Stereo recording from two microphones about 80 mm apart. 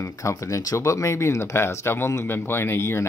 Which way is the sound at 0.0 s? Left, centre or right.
Left.